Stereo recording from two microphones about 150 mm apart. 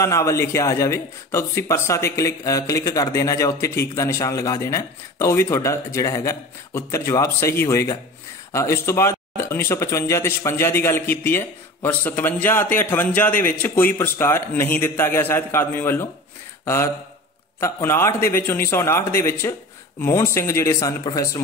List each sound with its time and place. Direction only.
0.0 s speech: 20° left (ahead or behind)
16.6 s a sound: 20° left (ahead or behind)
17.6 s speech: 20° left (ahead or behind)